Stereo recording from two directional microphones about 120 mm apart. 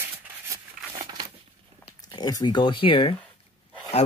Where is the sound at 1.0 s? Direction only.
35° right (ahead or behind).